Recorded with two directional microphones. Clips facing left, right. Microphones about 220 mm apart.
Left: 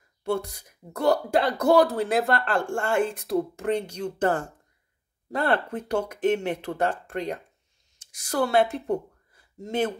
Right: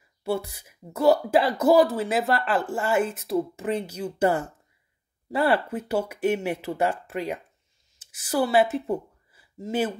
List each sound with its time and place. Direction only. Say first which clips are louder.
0.2 s speech: even; 5° right (ahead or behind)